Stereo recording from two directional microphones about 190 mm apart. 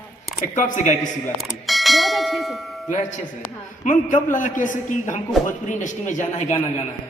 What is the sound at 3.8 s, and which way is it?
A man's voice, 45° left (ahead or behind).